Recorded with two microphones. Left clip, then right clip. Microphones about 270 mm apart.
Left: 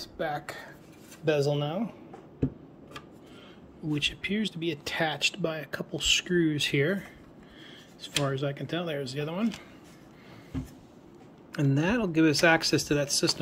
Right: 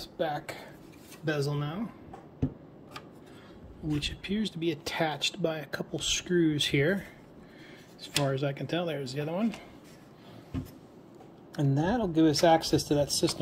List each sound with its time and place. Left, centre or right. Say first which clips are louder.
0.0 s speech: even; centre
4.0 s speech: left 4 dB; centre
8.0 s speech: even; centre
11.6 s speech: left 1 dB; left
12.1 s speech: even; centre